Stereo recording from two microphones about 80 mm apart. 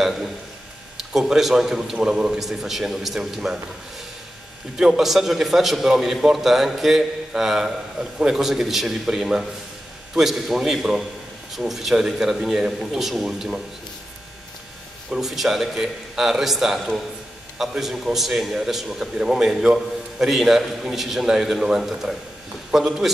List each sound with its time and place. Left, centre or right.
0.0 s a man's voice: centre
4.7 s a man's voice: centre
15.0 s a man's voice: centre